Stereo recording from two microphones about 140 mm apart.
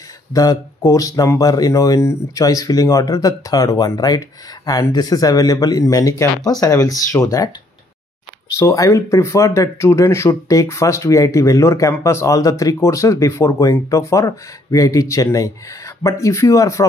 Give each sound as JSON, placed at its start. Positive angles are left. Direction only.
{"t": 0.3, "sound": "speech", "side_deg": 25}
{"t": 8.5, "sound": "speech", "side_deg": 20}